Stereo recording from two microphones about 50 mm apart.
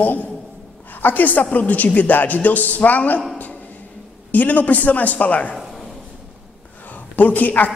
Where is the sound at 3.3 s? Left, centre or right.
Left.